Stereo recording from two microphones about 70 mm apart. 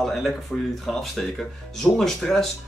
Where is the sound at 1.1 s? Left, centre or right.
Centre.